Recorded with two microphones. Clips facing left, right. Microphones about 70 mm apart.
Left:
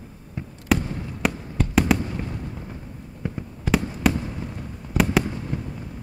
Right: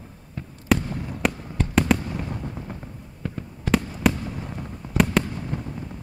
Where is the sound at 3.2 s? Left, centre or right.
Centre.